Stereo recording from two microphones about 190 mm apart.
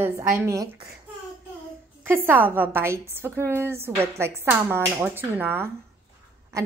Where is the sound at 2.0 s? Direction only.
10° right (ahead or behind).